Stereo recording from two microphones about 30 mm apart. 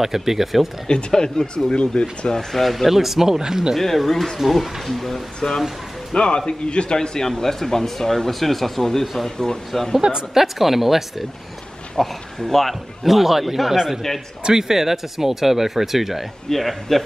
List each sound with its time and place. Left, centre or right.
0.0 s speech: centre
0.8 s a man's voice: left
2.5 s a man's voice: centre
2.9 s speech: centre
4.1 s speech: centre
4.4 s a man's voice: centre
5.4 s speech: centre
6.1 s a man's voice: left
7.0 s a man's voice: left
10.3 s speech: centre
12.0 s a man's voice: centre
16.4 s a man's voice: centre